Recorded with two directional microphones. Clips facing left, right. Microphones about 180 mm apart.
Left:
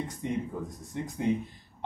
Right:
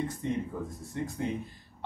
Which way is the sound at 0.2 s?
15° left (ahead or behind).